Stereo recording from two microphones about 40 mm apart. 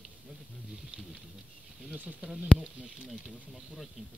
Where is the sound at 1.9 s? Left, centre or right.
Right.